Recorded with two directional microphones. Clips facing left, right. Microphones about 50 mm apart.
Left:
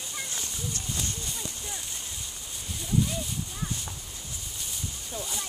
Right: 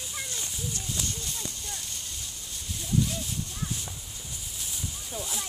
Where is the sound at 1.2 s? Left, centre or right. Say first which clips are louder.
Even; centre.